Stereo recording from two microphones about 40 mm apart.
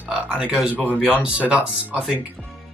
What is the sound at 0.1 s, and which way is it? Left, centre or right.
Speech, right.